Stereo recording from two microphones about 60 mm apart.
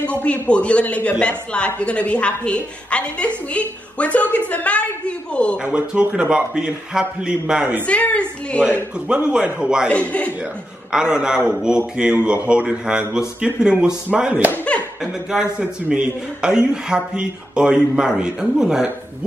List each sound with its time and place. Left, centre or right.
0.2 s a woman's voice: left
5.6 s speech: centre
7.8 s a woman's voice: left
9.3 s speech: centre
9.8 s a woman's voice: left
10.9 s speech: centre